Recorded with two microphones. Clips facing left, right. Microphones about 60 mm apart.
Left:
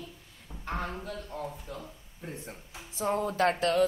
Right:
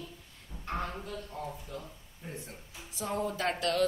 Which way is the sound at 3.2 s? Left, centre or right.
Left.